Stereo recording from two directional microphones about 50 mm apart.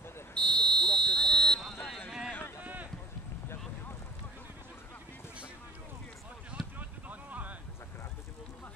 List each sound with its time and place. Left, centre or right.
0.3 s fire alarm: left
2.0 s run: centre
2.6 s clip-clop: right
6.8 s a sound: right